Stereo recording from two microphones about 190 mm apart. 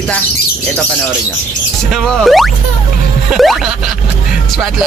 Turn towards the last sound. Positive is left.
turn(degrees=0)  # may be behind; listen again after turning